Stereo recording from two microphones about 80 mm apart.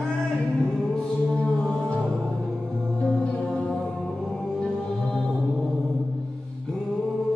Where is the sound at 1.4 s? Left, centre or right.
Centre.